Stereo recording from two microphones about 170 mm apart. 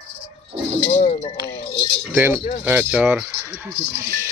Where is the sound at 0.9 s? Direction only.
35° left (ahead or behind).